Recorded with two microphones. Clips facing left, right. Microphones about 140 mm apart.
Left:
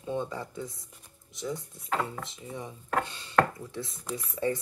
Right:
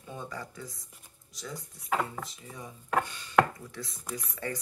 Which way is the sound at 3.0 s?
30° left (ahead or behind).